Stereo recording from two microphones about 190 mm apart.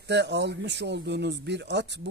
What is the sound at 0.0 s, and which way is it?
Speech, 65° right (ahead or behind).